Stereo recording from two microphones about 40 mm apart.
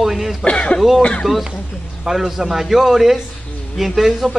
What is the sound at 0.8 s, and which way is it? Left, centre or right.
Speech, centre.